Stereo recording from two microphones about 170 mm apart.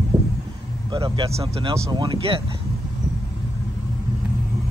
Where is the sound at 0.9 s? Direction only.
30° right (ahead or behind).